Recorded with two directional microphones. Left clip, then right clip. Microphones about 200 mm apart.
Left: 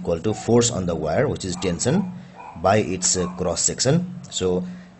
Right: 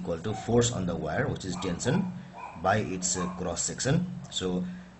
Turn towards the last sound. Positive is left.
turn(degrees=40)  # may be behind; listen again after turning